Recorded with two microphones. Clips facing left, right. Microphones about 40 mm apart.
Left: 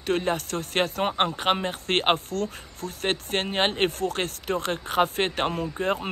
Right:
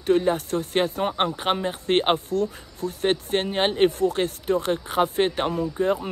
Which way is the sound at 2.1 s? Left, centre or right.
Left.